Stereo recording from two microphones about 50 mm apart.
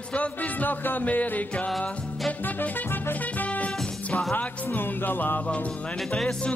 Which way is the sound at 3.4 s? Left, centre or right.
Left.